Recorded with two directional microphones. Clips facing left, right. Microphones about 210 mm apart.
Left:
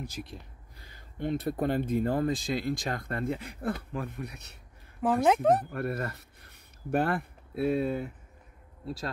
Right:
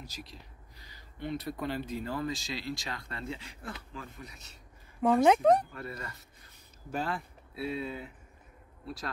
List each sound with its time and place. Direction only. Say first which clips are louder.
0.0 s speech: left 7 dB; 55° left (ahead or behind)
5.0 s speech: right 1 dB; 5° left (ahead or behind)
5.7 s speech: left 9 dB; 60° left (ahead or behind)